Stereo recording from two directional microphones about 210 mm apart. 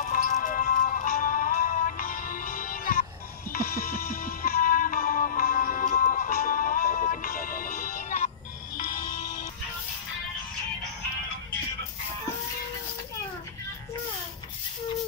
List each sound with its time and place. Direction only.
0.1 s music: 40° left (ahead or behind)